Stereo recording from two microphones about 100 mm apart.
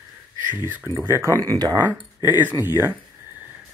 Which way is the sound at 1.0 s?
25° right (ahead or behind).